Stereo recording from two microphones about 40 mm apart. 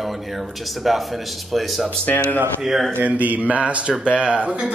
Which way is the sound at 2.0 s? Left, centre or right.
Left.